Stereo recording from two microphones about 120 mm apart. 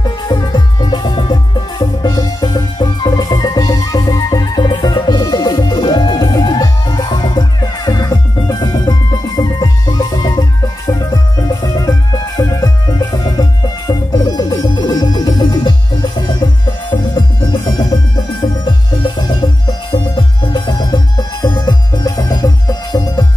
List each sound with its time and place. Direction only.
0.3 s music: 35° left (ahead or behind)